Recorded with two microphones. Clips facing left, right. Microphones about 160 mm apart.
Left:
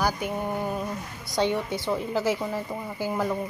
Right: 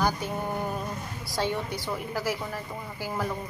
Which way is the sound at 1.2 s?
20° left (ahead or behind).